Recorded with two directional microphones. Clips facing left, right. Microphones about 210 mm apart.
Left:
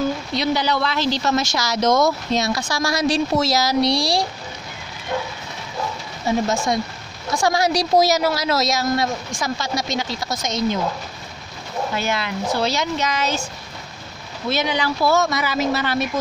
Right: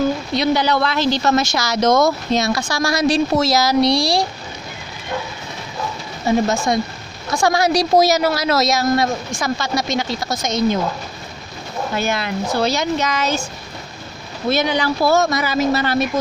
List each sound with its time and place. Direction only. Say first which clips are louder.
0.3 s speech: right 4 dB; 55° right (ahead or behind)
6.2 s speech: right 3 dB; 60° right (ahead or behind)
11.9 s speech: right 4 dB; 45° right (ahead or behind)
14.5 s speech: right 4 dB; 45° right (ahead or behind)